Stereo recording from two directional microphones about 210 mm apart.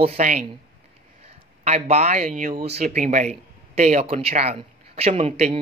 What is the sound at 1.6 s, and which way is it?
Speech, 30° right (ahead or behind).